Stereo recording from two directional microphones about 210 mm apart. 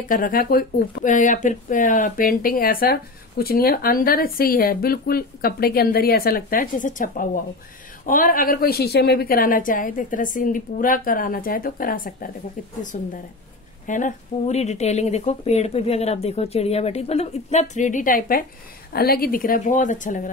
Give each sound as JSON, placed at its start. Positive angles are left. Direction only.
{"t": 0.1, "sound": "speech", "side_deg": 40}